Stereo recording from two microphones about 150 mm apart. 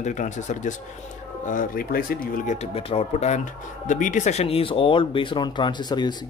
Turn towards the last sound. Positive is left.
turn(degrees=30)  # may be behind; listen again after turning